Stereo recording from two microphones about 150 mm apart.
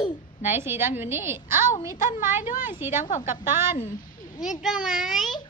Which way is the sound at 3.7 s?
60° left (ahead or behind).